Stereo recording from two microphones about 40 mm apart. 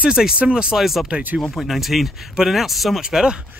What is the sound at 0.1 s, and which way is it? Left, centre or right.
Speech, centre.